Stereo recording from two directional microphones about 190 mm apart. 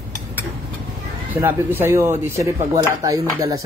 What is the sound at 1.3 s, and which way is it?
Speech, 10° right (ahead or behind).